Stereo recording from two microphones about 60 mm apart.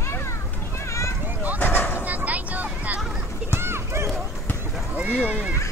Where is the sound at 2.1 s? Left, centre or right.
Right.